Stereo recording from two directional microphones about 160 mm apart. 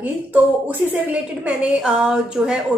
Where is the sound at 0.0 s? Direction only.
10° right (ahead or behind).